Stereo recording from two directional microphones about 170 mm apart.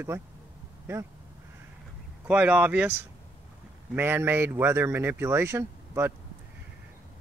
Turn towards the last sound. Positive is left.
turn(degrees=-15)  # may be behind; listen again after turning